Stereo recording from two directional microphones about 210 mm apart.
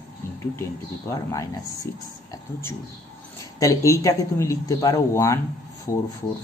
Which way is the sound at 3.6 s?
15° left (ahead or behind).